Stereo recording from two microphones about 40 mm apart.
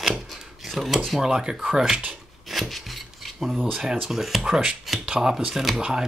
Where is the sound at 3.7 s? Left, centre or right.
Centre.